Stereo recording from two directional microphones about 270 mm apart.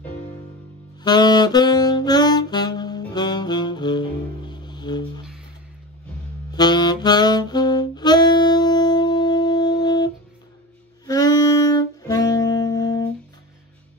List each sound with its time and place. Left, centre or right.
1.0 s saxophone: centre
6.5 s saxophone: centre